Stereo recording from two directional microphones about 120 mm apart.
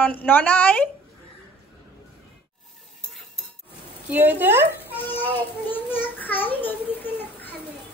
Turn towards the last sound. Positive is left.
turn(degrees=15)  # may be behind; listen again after turning